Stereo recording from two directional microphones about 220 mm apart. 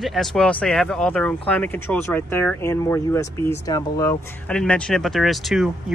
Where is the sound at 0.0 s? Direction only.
Centre (ahead or behind).